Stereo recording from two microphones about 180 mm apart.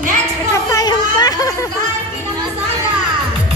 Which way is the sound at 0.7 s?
20° left (ahead or behind).